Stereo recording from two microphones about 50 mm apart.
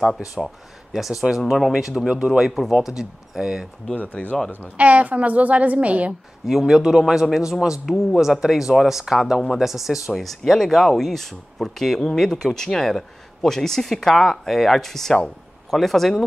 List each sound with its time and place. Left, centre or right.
0.4 s speech: centre
0.9 s speech: centre
3.9 s speech: left
4.6 s a woman's voice: right
6.4 s speech: centre